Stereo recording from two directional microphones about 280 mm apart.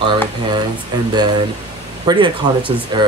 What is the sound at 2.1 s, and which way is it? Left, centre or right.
Speech, centre.